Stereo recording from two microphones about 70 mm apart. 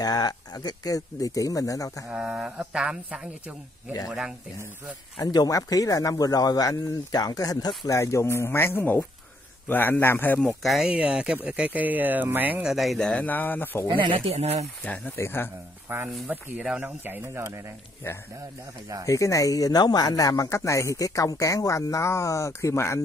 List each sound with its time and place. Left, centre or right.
0.0 s speech: left
2.0 s speech: centre
5.2 s a man's voice: left
10.4 s speech: centre
10.9 s speech: centre
12.6 s speech: centre
13.2 s speech: left
15.1 s a man's voice: left
15.9 s speech: right
17.3 s speech: right
19.0 s speech: left